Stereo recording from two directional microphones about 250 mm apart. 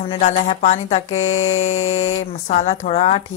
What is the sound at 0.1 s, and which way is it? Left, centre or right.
Speech, left.